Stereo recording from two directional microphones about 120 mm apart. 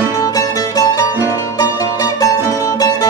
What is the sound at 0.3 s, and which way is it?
Music, 30° left (ahead or behind).